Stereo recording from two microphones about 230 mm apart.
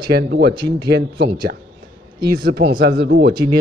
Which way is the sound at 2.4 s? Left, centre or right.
Right.